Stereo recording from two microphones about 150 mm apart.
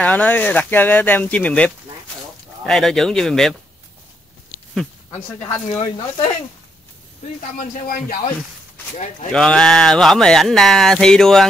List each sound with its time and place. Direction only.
0.0 s speech: 10° left (ahead or behind)
5.1 s speech: 10° left (ahead or behind)
5.7 s speech: 40° left (ahead or behind)
8.9 s speech: 50° left (ahead or behind)
9.3 s speech: 5° left (ahead or behind)